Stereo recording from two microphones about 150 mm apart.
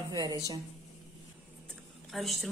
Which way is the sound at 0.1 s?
25° right (ahead or behind).